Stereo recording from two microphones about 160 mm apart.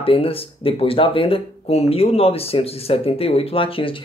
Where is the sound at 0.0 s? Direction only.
35° left (ahead or behind).